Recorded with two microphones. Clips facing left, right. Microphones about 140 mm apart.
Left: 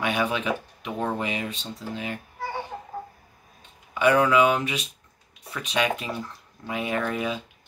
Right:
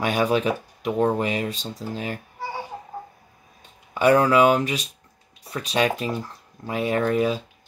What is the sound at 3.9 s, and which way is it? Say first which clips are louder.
Speech: right 2 dB; 35° right (ahead or behind).